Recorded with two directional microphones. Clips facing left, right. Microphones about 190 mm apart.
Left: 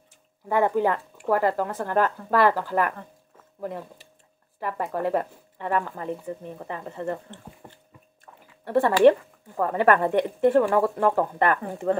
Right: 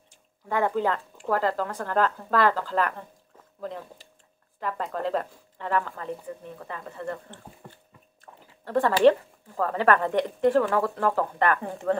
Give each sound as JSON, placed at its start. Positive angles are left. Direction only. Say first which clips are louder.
{"t": 0.5, "sound": "a woman's voice", "louder": "left 3 dB", "side_deg": 15}
{"t": 4.6, "sound": "a woman's voice", "louder": "left 2 dB", "side_deg": 15}
{"t": 7.6, "sound": "a sound", "louder": "even", "side_deg": 20}
{"t": 8.6, "sound": "a woman's voice", "louder": "left 2 dB", "side_deg": 15}